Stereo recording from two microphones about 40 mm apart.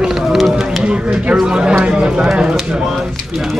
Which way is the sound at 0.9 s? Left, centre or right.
Right.